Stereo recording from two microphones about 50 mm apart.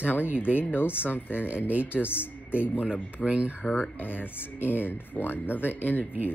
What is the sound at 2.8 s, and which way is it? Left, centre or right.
Speech, right.